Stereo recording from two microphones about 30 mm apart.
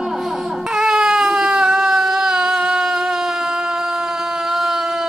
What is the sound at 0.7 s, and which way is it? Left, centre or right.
Baby cry, centre.